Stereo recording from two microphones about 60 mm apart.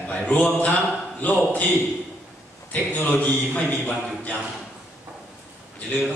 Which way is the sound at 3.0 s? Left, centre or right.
Centre.